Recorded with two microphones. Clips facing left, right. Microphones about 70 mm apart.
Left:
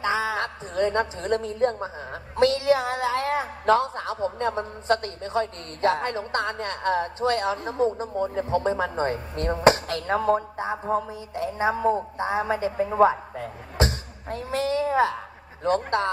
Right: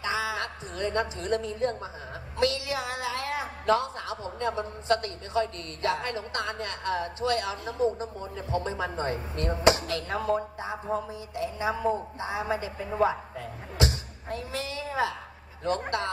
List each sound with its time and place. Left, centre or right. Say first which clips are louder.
0.0 s a woman's voice: left 5 dB; left
12.7 s a woman's voice: left 8 dB; left